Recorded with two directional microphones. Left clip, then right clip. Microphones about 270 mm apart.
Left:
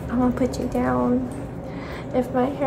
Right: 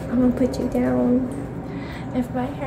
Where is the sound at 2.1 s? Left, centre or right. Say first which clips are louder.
Left 4 dB; centre.